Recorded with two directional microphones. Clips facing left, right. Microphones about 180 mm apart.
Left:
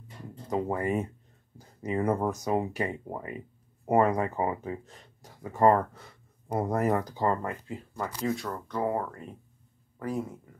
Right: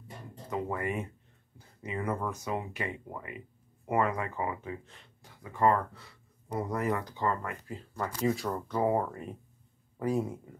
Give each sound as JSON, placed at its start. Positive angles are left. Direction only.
{"t": 0.5, "sound": "speech", "side_deg": 35}
{"t": 7.6, "sound": "speech", "side_deg": 15}
{"t": 8.2, "sound": "speech", "side_deg": -5}